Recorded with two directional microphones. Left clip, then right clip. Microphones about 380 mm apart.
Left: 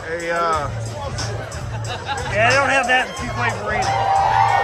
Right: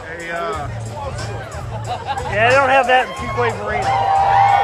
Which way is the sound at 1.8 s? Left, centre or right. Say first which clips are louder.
Right 2 dB; centre.